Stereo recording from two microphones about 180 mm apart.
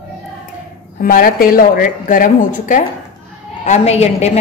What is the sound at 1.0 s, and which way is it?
A woman's voice, 55° left (ahead or behind).